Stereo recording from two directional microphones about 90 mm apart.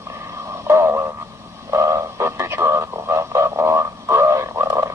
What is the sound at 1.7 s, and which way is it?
Radio, 30° right (ahead or behind).